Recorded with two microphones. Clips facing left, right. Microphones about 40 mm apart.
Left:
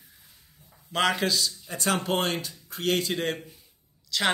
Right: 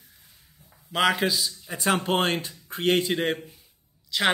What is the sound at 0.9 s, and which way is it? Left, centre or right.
Speech, centre.